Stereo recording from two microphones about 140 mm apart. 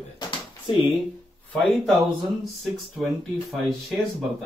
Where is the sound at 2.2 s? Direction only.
Centre (ahead or behind).